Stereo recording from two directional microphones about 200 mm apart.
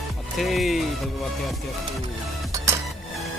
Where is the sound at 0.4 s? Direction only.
Centre (ahead or behind).